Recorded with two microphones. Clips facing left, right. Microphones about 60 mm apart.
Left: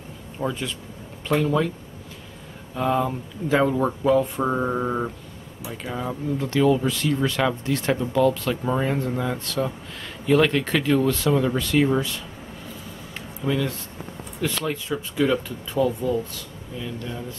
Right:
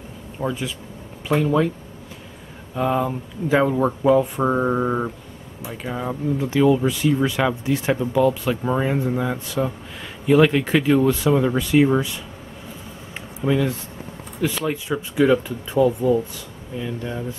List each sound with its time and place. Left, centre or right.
0.4 s speech: centre
2.7 s speech: centre
13.4 s speech: centre